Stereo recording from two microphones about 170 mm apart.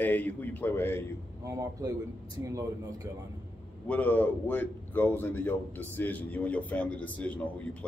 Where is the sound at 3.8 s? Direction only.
10° left (ahead or behind).